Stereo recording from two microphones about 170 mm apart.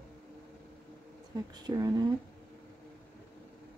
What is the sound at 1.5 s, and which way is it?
Speech, 20° right (ahead or behind).